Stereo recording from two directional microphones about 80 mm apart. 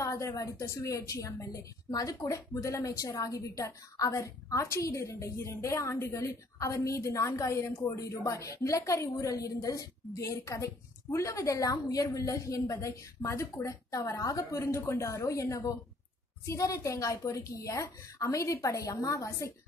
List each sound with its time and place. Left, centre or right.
0.0 s a woman's voice: left